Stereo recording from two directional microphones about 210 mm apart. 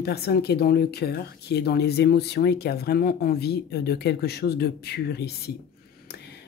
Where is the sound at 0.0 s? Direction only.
50° left (ahead or behind).